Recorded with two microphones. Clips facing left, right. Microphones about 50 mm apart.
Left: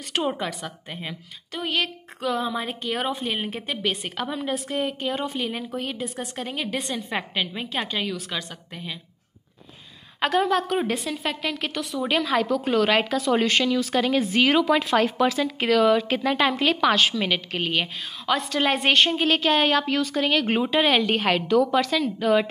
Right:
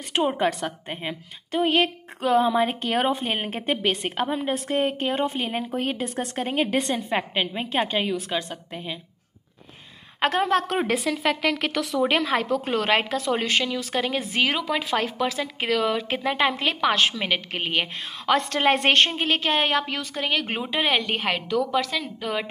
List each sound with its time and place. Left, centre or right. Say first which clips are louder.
0.1 s a woman's voice: right 2 dB; centre
0.4 s a woman's voice: right 6 dB; right
7.1 s a woman's voice: right 2 dB; right
10.2 s a woman's voice: even; right
10.9 s a woman's voice: right 4 dB; right
12.1 s a woman's voice: even; right; by 14.2 s centre
14.4 s a woman's voice: left 4 dB; centre
17.1 s a woman's voice: left 1 dB; right
17.7 s a woman's voice: even; right
19.0 s a woman's voice: left 3 dB; right